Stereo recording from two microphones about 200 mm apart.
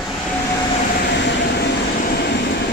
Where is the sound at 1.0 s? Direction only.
60° left (ahead or behind).